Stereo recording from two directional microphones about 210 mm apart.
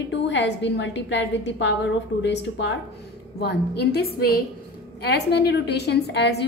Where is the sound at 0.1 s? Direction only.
55° left (ahead or behind).